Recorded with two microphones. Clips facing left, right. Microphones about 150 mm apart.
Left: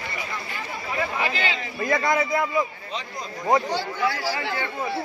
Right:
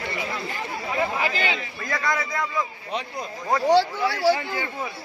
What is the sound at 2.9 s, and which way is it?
Speech, 60° right (ahead or behind).